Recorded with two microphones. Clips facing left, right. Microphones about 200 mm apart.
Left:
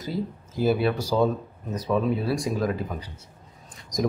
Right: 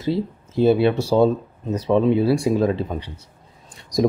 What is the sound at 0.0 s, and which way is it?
Speech, 25° right (ahead or behind).